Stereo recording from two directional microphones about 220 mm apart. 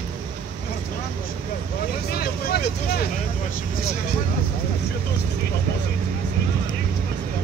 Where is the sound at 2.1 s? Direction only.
45° left (ahead or behind).